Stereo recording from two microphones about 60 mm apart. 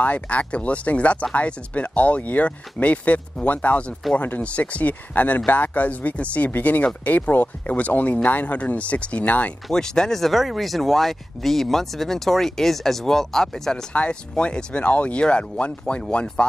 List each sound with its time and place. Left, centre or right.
0.0 s speech: left
9.7 s speech: centre
13.9 s speech: centre